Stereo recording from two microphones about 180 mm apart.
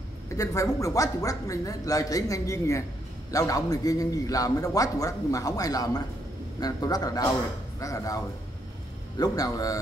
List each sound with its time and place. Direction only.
0.4 s a man's voice: 15° left (ahead or behind)
9.2 s a man's voice: 20° left (ahead or behind)